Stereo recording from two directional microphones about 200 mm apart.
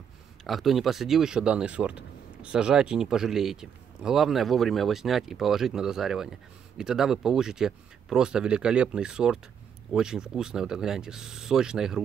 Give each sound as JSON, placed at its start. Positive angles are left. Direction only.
{"t": 0.4, "sound": "speech", "side_deg": 0}